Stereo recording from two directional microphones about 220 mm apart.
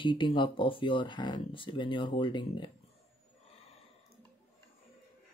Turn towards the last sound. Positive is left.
turn(degrees=25)  # may be behind; listen again after turning